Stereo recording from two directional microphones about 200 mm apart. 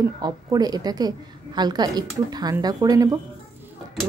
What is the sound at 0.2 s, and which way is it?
A woman's voice, 20° right (ahead or behind).